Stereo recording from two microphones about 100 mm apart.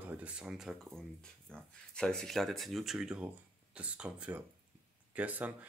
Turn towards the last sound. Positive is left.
turn(degrees=-15)  # may be behind; listen again after turning